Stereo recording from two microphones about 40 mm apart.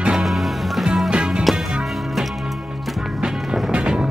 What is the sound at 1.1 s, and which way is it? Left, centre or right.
Music, centre.